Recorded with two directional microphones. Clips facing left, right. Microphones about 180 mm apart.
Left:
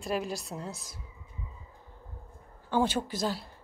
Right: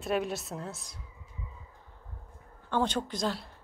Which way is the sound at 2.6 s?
5° left (ahead or behind).